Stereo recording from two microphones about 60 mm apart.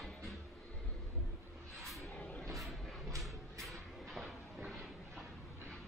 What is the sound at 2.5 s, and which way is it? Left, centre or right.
Vehicle, centre.